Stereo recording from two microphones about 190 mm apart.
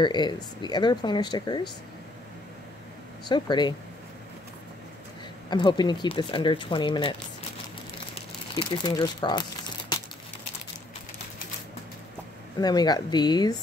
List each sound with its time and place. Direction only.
0.0 s speech: 25° left (ahead or behind)
3.3 s speech: 25° left (ahead or behind)
5.5 s speech: 25° left (ahead or behind)
8.1 s crumpling: 25° left (ahead or behind)
12.5 s speech: 20° left (ahead or behind)